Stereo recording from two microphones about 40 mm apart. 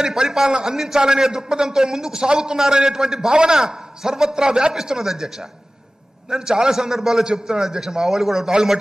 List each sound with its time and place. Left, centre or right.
0.0 s a man's voice: centre